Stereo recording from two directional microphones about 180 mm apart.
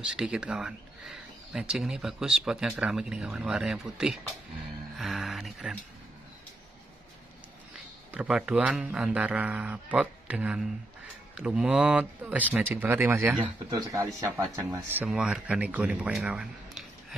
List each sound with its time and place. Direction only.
0.0 s speech: 5° right (ahead or behind)
8.1 s speech: 5° right (ahead or behind)